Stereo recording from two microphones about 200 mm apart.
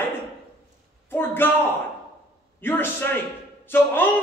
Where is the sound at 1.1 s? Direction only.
10° left (ahead or behind).